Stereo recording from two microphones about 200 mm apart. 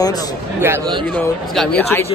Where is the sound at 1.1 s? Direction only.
5° left (ahead or behind).